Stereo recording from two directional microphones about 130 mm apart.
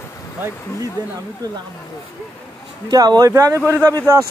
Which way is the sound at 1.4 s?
30° right (ahead or behind).